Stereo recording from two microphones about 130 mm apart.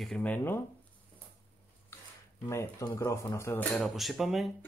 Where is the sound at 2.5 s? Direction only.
20° left (ahead or behind).